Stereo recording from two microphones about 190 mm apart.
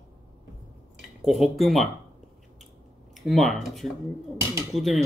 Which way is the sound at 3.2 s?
Centre (ahead or behind).